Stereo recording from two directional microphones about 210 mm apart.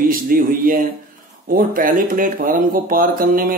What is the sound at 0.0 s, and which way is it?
Speech, 40° right (ahead or behind).